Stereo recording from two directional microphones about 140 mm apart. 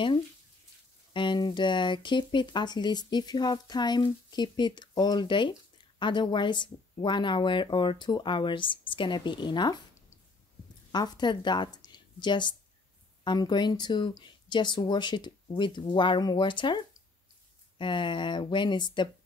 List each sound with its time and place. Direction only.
1.1 s speech: 35° left (ahead or behind)